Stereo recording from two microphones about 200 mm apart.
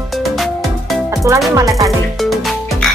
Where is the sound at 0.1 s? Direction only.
Centre (ahead or behind).